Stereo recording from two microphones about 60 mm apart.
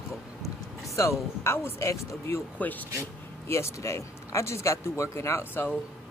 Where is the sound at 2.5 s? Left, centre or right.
Left.